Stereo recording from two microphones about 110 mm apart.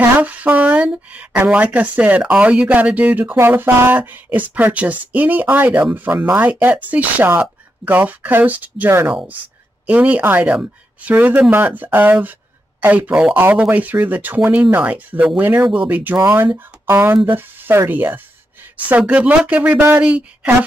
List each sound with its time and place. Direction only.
0.2 s speech: 15° right (ahead or behind)